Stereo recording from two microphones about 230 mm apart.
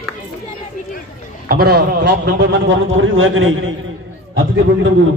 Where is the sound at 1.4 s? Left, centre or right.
Right.